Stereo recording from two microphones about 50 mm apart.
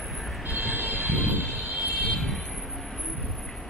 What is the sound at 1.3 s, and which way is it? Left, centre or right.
Vehicle, right.